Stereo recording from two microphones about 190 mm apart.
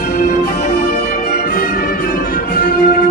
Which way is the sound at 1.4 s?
55° left (ahead or behind).